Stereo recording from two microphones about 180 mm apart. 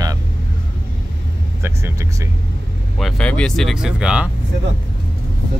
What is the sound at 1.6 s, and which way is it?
Speech, 15° right (ahead or behind).